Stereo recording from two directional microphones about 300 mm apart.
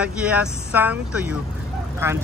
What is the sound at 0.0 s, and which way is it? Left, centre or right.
Speech, centre.